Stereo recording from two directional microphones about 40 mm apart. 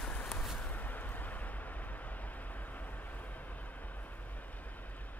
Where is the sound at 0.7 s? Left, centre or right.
Left.